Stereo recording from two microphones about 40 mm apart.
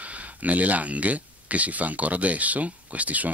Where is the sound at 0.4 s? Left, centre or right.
Right.